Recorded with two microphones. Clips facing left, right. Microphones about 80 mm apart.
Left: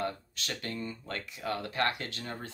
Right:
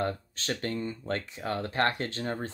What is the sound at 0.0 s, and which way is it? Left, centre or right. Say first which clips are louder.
Speech: right 4 dB; right.